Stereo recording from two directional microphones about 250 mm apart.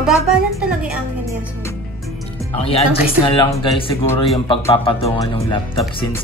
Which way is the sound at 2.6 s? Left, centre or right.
Left.